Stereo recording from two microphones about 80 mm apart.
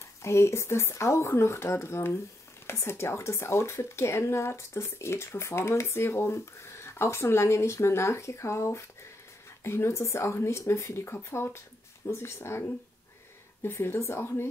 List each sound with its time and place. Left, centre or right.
0.2 s speech: left